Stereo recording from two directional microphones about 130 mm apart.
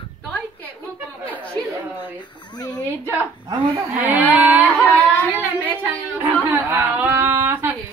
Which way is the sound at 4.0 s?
15° right (ahead or behind).